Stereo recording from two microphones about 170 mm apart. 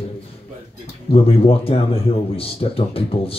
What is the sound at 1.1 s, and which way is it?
Speech, 35° left (ahead or behind).